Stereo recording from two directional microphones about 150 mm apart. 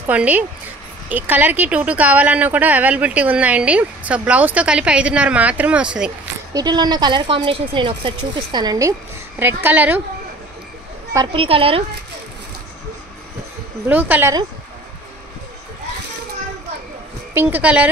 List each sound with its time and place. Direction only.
0.0 s speech: 10° right (ahead or behind)
6.5 s speech: 30° right (ahead or behind)
9.4 s speech: 15° right (ahead or behind)
11.1 s speech: 35° right (ahead or behind)
13.8 s speech: 10° right (ahead or behind)
17.3 s speech: 15° right (ahead or behind)